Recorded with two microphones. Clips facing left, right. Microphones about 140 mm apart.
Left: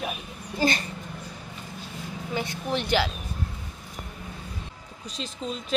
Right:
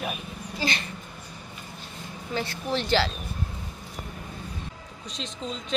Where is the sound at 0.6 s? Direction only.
45° left (ahead or behind).